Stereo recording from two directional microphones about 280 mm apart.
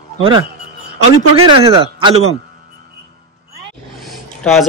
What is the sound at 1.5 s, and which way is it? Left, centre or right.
Speech, centre.